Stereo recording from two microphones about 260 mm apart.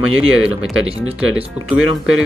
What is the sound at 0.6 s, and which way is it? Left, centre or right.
Speech, centre.